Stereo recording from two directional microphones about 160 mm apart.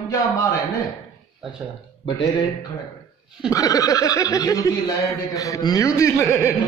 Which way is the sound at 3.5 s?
20° left (ahead or behind).